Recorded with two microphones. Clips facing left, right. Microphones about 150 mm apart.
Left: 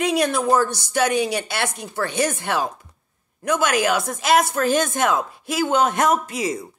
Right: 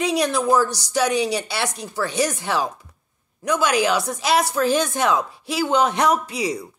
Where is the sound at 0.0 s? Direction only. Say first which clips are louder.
Even; 50° left (ahead or behind).